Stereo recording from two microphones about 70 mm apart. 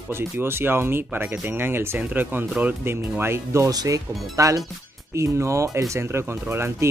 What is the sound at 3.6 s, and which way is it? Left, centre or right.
Speech, right.